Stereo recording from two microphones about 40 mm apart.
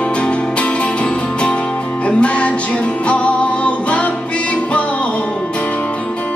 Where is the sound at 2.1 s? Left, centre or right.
Left.